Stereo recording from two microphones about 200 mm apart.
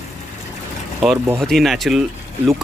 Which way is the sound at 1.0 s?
10° right (ahead or behind).